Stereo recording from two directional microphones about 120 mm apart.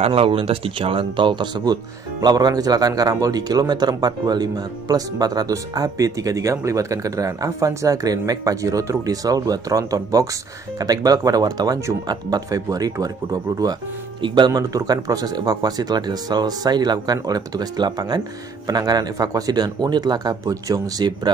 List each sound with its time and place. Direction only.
0.0 s speech: 50° right (ahead or behind); by 21.3 s 35° right (ahead or behind)